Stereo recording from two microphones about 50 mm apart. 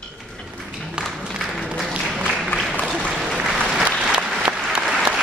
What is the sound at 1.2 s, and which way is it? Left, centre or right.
Applause, centre.